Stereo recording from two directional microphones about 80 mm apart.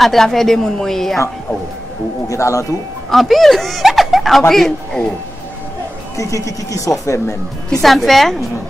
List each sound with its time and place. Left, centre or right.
0.0 s speech: centre
2.2 s speech: left
3.1 s speech: centre
6.1 s speech: left
7.8 s speech: centre